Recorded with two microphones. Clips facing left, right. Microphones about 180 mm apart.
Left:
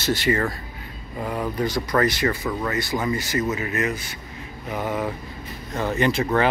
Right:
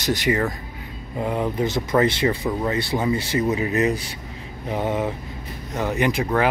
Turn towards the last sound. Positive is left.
turn(degrees=-10)  # may be behind; listen again after turning